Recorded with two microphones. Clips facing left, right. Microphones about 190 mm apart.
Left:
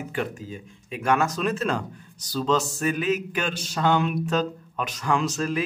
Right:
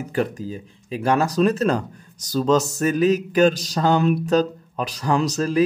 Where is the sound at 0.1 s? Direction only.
40° right (ahead or behind).